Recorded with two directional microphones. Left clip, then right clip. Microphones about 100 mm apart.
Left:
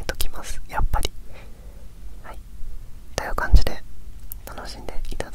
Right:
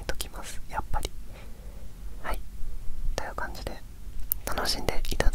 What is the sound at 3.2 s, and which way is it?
Whispering, 25° left (ahead or behind).